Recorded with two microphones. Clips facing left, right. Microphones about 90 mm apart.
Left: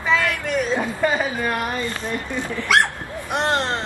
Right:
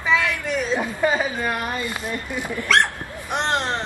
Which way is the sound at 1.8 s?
15° right (ahead or behind).